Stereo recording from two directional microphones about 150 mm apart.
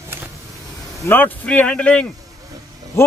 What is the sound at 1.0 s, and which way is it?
Speech, 10° left (ahead or behind).